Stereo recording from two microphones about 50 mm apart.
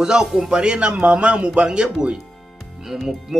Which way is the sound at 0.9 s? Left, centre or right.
Right.